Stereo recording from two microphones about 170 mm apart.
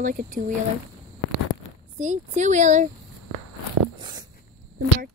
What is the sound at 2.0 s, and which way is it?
Speech, 45° right (ahead or behind).